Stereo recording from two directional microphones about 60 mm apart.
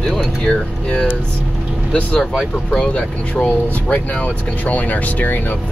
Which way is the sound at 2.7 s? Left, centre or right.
Centre.